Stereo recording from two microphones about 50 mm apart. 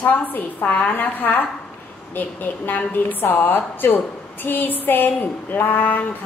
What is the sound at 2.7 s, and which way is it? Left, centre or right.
A woman's voice, left.